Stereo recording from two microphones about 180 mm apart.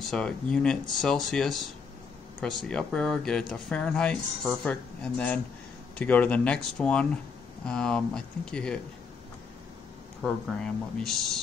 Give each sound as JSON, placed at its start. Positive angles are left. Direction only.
{"t": 0.0, "sound": "speech", "side_deg": 5}
{"t": 10.2, "sound": "speech", "side_deg": 5}